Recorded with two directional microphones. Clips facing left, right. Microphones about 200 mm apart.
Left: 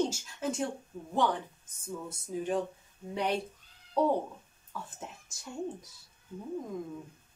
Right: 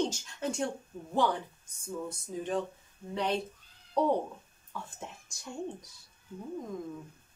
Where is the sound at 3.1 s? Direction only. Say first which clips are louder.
Even; 10° left (ahead or behind).